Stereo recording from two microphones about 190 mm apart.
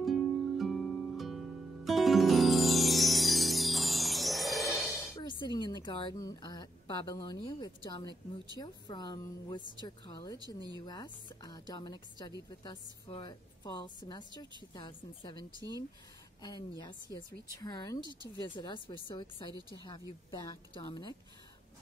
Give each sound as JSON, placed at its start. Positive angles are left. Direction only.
{"t": 0.0, "sound": "music", "side_deg": 0}
{"t": 5.1, "sound": "a woman's voice", "side_deg": 25}
{"t": 10.4, "sound": "speech", "side_deg": -20}
{"t": 10.9, "sound": "a woman's voice", "side_deg": 20}
{"t": 16.4, "sound": "a woman's voice", "side_deg": 20}